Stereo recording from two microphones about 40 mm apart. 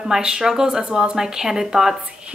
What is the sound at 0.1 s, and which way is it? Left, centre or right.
A woman's voice, centre.